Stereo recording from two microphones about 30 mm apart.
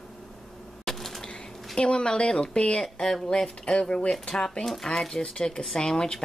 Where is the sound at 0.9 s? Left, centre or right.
Centre.